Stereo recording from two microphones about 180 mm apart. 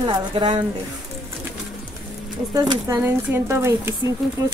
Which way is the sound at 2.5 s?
20° right (ahead or behind).